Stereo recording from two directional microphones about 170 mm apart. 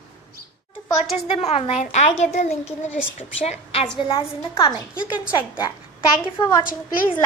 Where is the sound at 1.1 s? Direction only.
40° left (ahead or behind).